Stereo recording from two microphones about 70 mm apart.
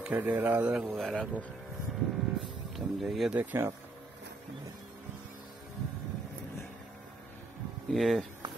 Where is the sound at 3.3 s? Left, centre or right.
Right.